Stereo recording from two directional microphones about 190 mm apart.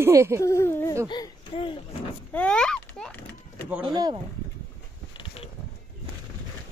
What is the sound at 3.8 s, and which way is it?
Speech, 25° right (ahead or behind).